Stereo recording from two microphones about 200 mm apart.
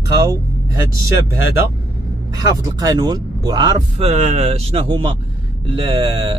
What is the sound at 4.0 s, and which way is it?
Speech, 35° right (ahead or behind).